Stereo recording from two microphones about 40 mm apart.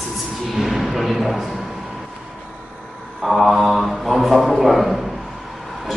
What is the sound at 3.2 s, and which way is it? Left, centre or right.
A man's voice, centre.